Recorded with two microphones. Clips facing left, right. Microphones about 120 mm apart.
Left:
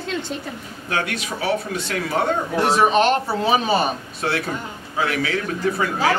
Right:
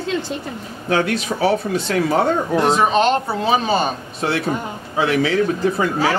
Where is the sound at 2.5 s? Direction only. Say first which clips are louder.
Even; centre (ahead or behind).